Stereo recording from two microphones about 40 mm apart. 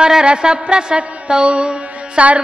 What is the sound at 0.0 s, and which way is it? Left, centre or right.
Music, right.